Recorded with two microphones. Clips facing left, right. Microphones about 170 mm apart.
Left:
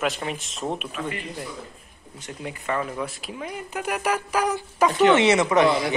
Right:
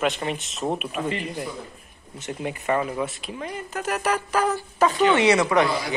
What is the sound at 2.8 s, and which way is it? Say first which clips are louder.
Speech: right 3 dB; 5° right (ahead or behind).